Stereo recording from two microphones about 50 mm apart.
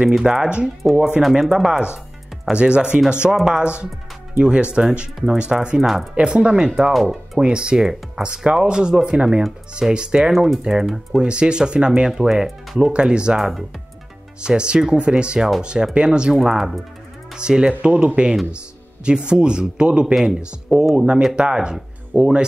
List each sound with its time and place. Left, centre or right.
0.1 s speech: centre
5.8 s speech: centre
6.1 s speech: right
6.9 s speech: centre
7.3 s speech: centre
10.3 s speech: centre
13.4 s speech: centre
14.4 s speech: centre
22.1 s speech: right